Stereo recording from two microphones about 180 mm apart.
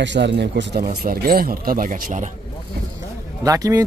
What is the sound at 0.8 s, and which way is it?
Speech, 55° right (ahead or behind).